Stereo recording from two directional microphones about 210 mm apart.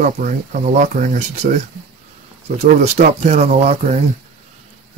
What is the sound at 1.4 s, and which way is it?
Speech, 40° right (ahead or behind).